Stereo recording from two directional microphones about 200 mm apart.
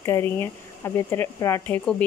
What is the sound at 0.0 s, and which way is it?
Speech, 15° left (ahead or behind).